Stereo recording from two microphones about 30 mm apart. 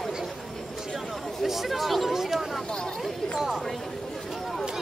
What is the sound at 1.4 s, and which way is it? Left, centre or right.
Speech, centre.